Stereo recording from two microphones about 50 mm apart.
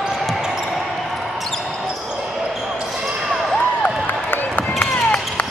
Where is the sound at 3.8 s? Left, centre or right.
Left.